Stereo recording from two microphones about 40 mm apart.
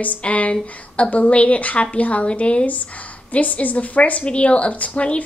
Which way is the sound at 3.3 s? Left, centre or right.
Left.